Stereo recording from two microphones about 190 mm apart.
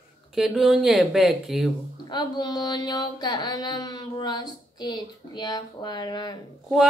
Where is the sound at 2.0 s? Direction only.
20° left (ahead or behind).